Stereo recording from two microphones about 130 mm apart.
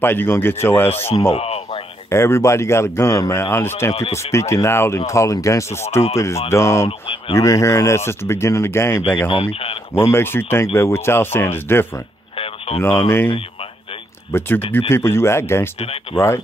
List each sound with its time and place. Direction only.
0.0 s speech: 15° left (ahead or behind)
1.3 s a sound: 50° left (ahead or behind)
2.0 s speech: 20° left (ahead or behind)
3.9 s speech: 55° left (ahead or behind)
4.3 s speech: 20° left (ahead or behind)
6.9 s speech: 45° left (ahead or behind)
7.3 s speech: 25° left (ahead or behind)
9.3 s speech: 45° left (ahead or behind)
9.9 s speech: 20° left (ahead or behind)
12.4 s radio: 45° left (ahead or behind)
13.0 s speech: 20° left (ahead or behind)
14.3 s speech: 20° left (ahead or behind)
15.8 s speech: 45° left (ahead or behind)